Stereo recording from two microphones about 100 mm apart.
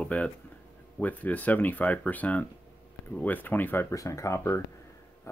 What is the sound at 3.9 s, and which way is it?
Speech, 30° left (ahead or behind).